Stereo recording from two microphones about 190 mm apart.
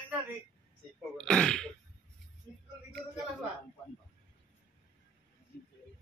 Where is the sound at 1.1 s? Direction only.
5° left (ahead or behind).